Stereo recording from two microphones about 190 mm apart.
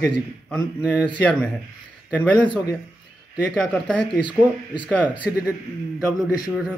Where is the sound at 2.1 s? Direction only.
5° left (ahead or behind).